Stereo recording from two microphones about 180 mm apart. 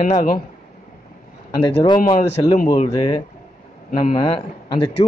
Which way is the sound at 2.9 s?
25° left (ahead or behind).